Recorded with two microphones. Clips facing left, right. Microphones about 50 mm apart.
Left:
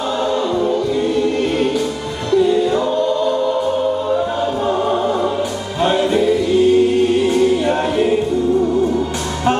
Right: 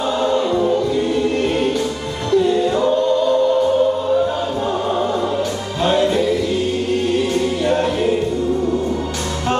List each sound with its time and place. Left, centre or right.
0.2 s choir: centre
2.3 s music: centre
4.6 s music: centre
7.2 s choir: centre